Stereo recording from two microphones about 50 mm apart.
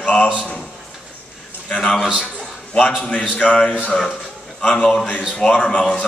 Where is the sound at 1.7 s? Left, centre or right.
Left.